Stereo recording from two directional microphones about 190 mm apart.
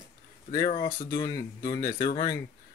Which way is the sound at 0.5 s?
20° left (ahead or behind).